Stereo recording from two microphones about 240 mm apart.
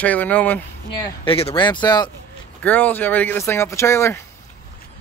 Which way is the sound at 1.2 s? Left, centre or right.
Left.